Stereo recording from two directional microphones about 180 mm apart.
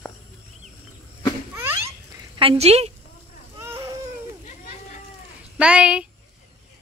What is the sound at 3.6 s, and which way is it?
Baby cry, 15° right (ahead or behind).